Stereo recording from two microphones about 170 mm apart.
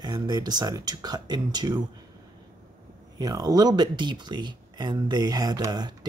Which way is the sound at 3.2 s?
20° right (ahead or behind).